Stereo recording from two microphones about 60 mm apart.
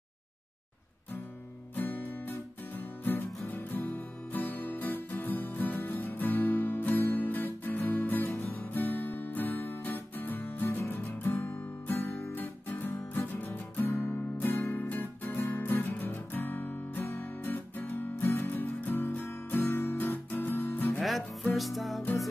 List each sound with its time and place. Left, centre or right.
1.8 s music: left
11.2 s guitar: left
13.8 s music: left
15.3 s music: left
15.6 s music: left
18.5 s guitar: left
21.0 s music: centre